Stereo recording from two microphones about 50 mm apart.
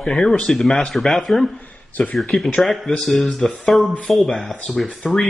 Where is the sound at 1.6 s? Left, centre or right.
Left.